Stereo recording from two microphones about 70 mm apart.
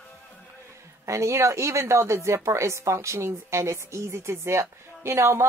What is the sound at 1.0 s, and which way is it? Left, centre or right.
Speech, right.